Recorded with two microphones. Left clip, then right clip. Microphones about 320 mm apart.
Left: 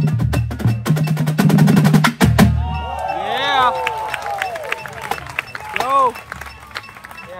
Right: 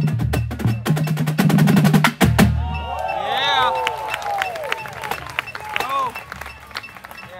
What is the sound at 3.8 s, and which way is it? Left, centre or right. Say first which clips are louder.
Run: left 1 dB; centre.